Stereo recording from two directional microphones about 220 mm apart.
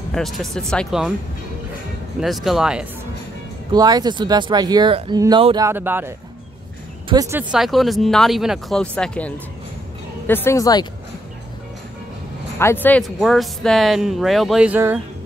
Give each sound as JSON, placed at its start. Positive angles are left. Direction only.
{"t": 0.1, "sound": "speech", "side_deg": 0}
{"t": 2.1, "sound": "speech", "side_deg": 0}
{"t": 3.7, "sound": "speech", "side_deg": -15}
{"t": 12.5, "sound": "speech", "side_deg": 10}